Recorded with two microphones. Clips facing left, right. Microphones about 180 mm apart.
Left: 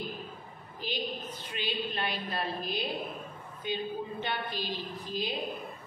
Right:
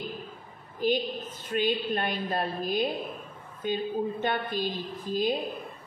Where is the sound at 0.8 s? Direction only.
50° right (ahead or behind).